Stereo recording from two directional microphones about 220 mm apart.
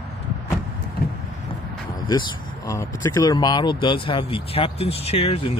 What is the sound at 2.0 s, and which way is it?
Speech, 20° left (ahead or behind).